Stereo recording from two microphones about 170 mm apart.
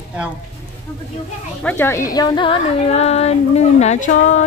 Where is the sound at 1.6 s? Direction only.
10° left (ahead or behind).